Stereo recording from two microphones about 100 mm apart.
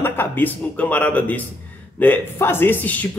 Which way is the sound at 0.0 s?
20° left (ahead or behind).